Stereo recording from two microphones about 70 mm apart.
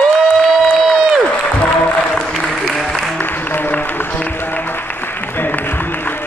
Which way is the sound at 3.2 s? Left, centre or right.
Left.